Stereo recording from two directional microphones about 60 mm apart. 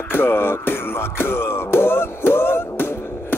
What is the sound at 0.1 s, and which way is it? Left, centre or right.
Music, left.